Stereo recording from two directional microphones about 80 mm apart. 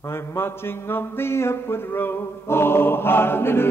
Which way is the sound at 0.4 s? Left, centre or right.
Left.